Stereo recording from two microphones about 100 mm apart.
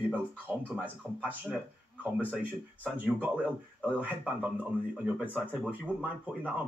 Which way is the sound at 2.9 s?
15° right (ahead or behind).